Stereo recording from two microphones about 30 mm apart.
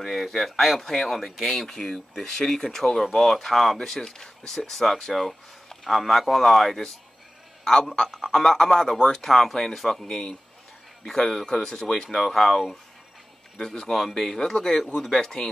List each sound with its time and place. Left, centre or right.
0.1 s speech: centre
1.6 s speech: centre
4.0 s speech: centre
7.9 s speech: left
12.1 s speech: centre
13.6 s speech: left